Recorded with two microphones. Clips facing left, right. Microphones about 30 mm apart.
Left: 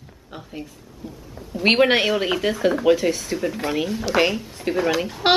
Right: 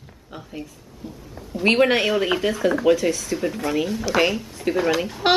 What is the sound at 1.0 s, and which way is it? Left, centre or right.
Speech, centre.